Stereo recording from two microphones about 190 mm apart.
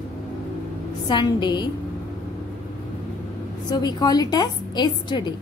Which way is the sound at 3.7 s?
20° left (ahead or behind).